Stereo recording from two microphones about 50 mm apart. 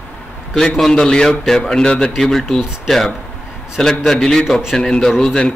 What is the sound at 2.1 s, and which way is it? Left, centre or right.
Speech, centre.